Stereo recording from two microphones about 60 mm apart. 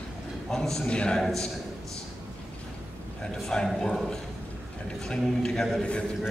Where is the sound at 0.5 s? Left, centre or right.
Centre.